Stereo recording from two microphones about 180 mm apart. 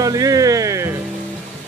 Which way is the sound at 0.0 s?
20° right (ahead or behind).